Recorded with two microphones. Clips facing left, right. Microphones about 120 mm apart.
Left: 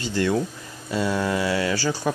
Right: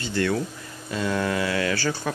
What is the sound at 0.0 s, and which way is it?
Speech, 15° left (ahead or behind).